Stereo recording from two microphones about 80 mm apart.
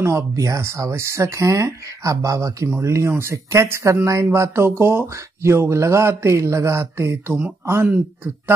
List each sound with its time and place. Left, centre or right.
0.0 s speech: right